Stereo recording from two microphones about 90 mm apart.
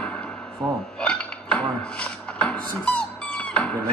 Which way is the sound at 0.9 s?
10° left (ahead or behind).